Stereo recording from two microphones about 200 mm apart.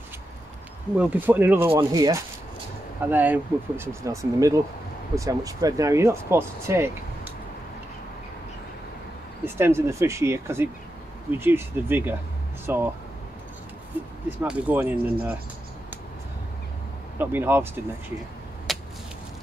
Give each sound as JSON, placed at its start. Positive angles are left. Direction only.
{"t": 0.9, "sound": "speech", "side_deg": -10}
{"t": 1.7, "sound": "speech", "side_deg": -20}
{"t": 9.4, "sound": "speech", "side_deg": -10}
{"t": 14.4, "sound": "speech", "side_deg": -10}
{"t": 17.2, "sound": "speech", "side_deg": -10}
{"t": 18.7, "sound": "a sound", "side_deg": 0}